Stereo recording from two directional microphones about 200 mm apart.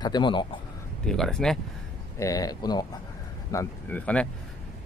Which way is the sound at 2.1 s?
15° left (ahead or behind).